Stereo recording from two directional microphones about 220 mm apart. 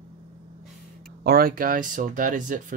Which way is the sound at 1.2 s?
45° right (ahead or behind).